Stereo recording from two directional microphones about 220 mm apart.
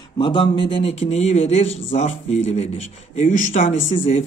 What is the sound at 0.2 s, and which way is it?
A man's voice, 25° left (ahead or behind).